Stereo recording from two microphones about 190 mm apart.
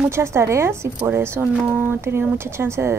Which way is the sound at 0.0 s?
15° right (ahead or behind).